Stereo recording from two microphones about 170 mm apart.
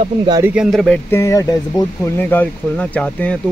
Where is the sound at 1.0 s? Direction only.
15° left (ahead or behind).